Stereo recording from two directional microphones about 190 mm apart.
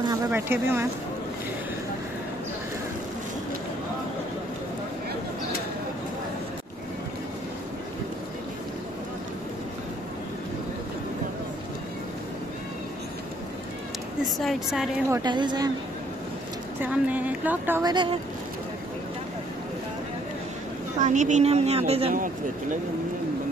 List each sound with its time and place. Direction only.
0.1 s speech: 15° right (ahead or behind)
14.2 s speech: centre (ahead or behind)
15.0 s a woman's voice: 20° right (ahead or behind)
16.8 s speech: 10° right (ahead or behind)
21.0 s a woman's voice: 40° right (ahead or behind)
22.1 s speech: 45° right (ahead or behind)